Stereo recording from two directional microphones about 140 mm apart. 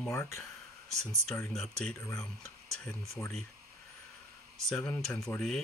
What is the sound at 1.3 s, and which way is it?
Speech, 5° left (ahead or behind).